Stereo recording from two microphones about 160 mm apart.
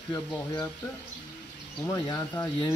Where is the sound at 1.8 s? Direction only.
20° left (ahead or behind).